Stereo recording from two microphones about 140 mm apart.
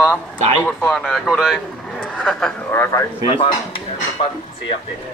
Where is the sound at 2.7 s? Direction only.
15° left (ahead or behind).